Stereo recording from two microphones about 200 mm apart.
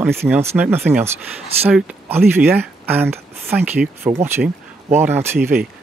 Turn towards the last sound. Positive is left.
turn(degrees=-10)  # may be behind; listen again after turning